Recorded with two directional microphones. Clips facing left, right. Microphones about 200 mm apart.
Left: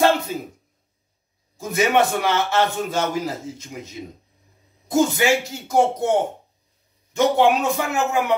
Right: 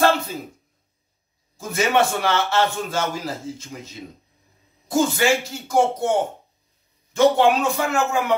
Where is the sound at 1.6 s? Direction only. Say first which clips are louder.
Left 1 dB; 20° left (ahead or behind).